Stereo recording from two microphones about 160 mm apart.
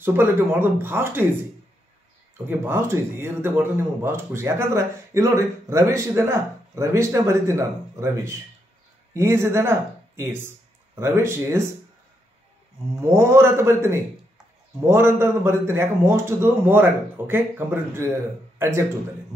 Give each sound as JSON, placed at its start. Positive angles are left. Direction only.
{"t": 0.0, "sound": "speech", "side_deg": -15}
{"t": 2.3, "sound": "speech", "side_deg": -15}
{"t": 12.9, "sound": "speech", "side_deg": -20}